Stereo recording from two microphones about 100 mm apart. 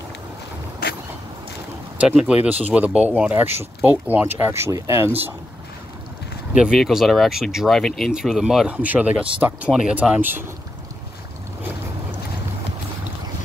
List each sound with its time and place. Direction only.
2.0 s speech: 10° right (ahead or behind); by 5.1 s 30° right (ahead or behind)
6.5 s speech: 5° right (ahead or behind)